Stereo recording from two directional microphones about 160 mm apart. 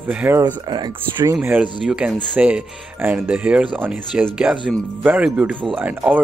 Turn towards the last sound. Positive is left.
turn(degrees=-10)  # may be behind; listen again after turning